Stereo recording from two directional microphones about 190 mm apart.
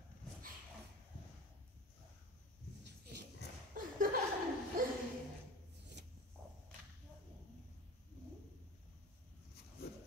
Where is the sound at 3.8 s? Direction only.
45° right (ahead or behind).